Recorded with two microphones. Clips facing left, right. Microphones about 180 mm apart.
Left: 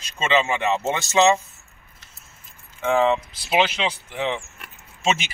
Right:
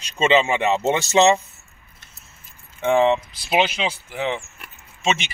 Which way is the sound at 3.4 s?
10° right (ahead or behind).